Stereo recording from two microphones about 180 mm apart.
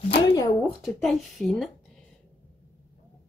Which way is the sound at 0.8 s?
Centre (ahead or behind).